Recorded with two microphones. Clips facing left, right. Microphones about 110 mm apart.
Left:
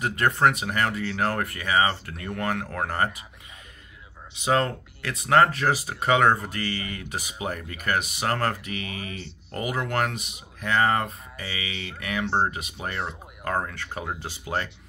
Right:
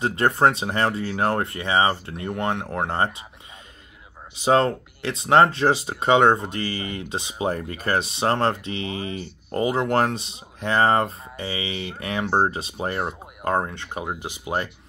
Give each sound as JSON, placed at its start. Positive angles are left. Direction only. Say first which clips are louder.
{"t": 0.0, "sound": "speech", "louder": "right 3 dB", "side_deg": -30}
{"t": 4.4, "sound": "speech", "louder": "right 5 dB", "side_deg": -30}
{"t": 12.3, "sound": "speech", "louder": "right 4 dB", "side_deg": -45}
{"t": 12.5, "sound": "speech", "louder": "right 5 dB", "side_deg": -30}